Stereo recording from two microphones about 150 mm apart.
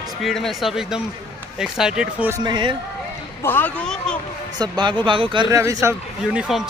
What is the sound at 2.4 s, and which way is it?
Speech, 30° right (ahead or behind).